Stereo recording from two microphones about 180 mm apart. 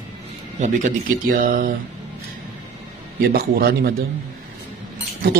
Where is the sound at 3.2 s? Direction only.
60° right (ahead or behind).